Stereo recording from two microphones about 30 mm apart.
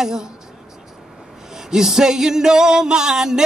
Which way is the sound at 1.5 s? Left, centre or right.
Centre.